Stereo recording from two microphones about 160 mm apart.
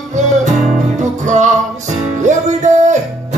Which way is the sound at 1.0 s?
50° right (ahead or behind).